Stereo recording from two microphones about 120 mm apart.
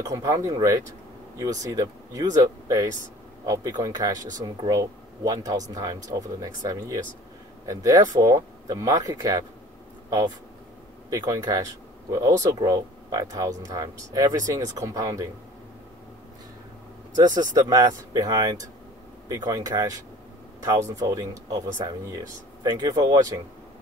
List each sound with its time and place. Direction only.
0.0 s speech: 30° right (ahead or behind)
17.1 s speech: 35° right (ahead or behind)
21.0 s speech: 30° right (ahead or behind)